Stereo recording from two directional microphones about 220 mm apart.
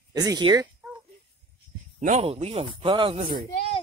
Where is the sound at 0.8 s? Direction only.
10° right (ahead or behind).